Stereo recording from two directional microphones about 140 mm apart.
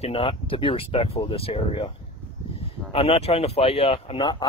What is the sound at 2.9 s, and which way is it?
Speech, 45° left (ahead or behind).